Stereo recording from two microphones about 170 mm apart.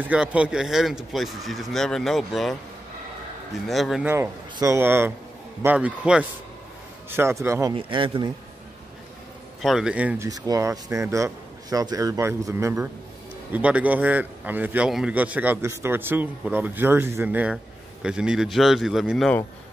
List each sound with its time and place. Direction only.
0.1 s speech: 5° right (ahead or behind)
3.6 s speech: centre (ahead or behind)
4.1 s a man's voice: 15° right (ahead or behind)
7.7 s a man's voice: 30° right (ahead or behind)
9.6 s a man's voice: centre (ahead or behind)